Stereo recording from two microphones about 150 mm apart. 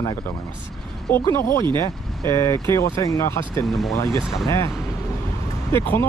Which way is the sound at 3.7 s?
Centre (ahead or behind).